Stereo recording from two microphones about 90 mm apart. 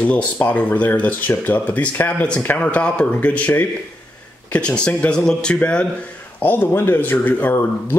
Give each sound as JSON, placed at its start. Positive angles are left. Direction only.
{"t": 0.0, "sound": "speech", "side_deg": 15}
{"t": 6.4, "sound": "speech", "side_deg": 25}